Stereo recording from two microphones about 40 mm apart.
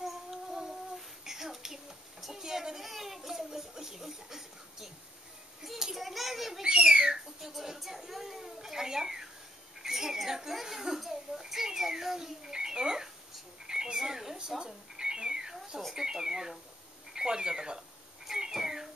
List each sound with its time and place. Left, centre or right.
0.0 s child singing: centre
2.2 s a sound: centre
6.0 s children playing: centre
6.6 s bird: right
7.5 s speech: centre
8.5 s a sound: centre
15.9 s speech: centre
18.2 s cat: centre